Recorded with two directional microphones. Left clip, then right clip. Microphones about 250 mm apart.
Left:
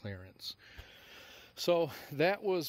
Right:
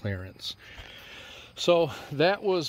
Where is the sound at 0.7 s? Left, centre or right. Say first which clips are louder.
Right 9 dB; left.